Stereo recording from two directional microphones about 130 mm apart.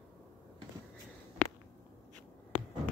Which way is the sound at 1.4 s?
65° left (ahead or behind).